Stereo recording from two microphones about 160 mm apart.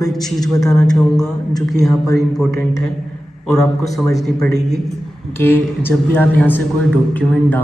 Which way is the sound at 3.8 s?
20° left (ahead or behind).